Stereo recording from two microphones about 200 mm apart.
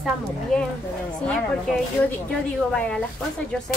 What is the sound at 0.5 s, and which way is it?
Speech, 5° left (ahead or behind).